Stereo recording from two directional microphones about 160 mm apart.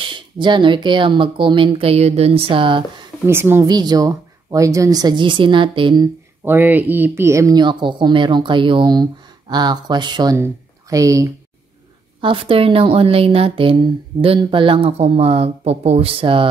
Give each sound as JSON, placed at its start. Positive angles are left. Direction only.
{"t": 0.0, "sound": "speech", "side_deg": -30}
{"t": 3.3, "sound": "speech", "side_deg": -15}
{"t": 3.6, "sound": "speech", "side_deg": -25}
{"t": 6.4, "sound": "speech", "side_deg": -15}
{"t": 12.2, "sound": "speech", "side_deg": -35}